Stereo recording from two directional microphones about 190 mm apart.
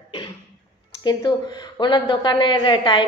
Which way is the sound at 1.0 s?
20° left (ahead or behind).